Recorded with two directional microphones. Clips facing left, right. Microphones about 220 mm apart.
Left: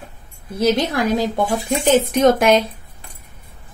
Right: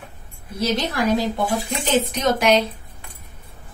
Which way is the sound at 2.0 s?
50° left (ahead or behind).